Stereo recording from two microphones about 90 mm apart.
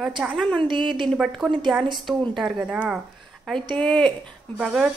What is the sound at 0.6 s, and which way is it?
Speech, 65° right (ahead or behind).